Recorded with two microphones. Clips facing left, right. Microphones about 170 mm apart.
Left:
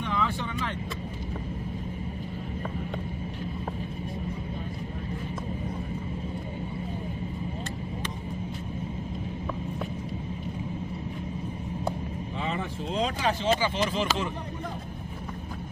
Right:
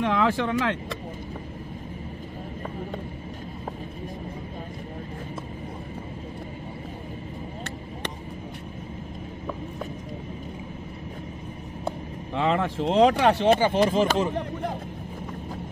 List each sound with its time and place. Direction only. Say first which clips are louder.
0.0 s speech: right 7 dB; 90° right
12.4 s speech: right 9 dB; 90° right; by 14.3 s 45° right (ahead or behind)